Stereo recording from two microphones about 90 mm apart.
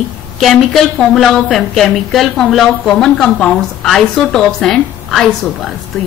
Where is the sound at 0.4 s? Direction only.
Centre (ahead or behind).